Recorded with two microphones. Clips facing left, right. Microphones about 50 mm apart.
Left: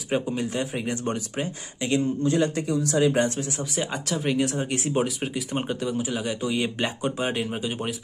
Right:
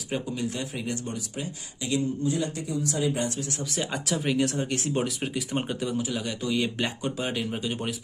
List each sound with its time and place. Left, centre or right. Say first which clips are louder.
0.1 s speech: left 4 dB; left
1.0 s speech: left 6 dB; left
2.2 s a man's voice: left 5 dB; left
3.7 s speech: left 1 dB; centre
6.0 s speech: left 2 dB; centre